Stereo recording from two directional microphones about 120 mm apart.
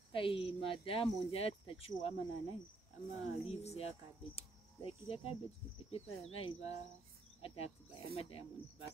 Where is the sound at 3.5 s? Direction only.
60° left (ahead or behind).